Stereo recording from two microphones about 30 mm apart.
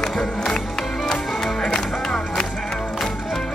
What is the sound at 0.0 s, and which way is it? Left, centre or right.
Music, centre.